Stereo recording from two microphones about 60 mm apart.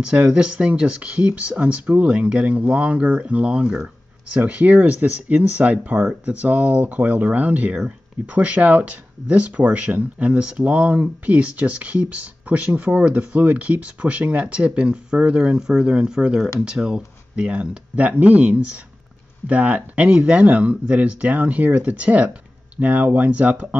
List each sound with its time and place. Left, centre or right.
0.0 s speech: centre
4.4 s speech: right